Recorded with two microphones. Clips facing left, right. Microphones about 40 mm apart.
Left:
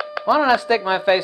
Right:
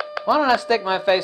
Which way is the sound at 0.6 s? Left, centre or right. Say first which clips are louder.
Left 1 dB; centre.